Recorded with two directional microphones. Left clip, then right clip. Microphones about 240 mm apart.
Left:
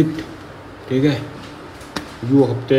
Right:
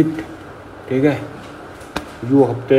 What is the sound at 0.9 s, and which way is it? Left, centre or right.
Speech, centre.